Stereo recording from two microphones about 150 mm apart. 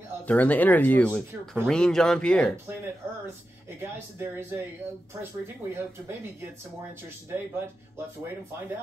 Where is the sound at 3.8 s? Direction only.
15° right (ahead or behind).